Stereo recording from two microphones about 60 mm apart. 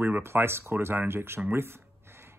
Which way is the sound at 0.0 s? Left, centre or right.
Right.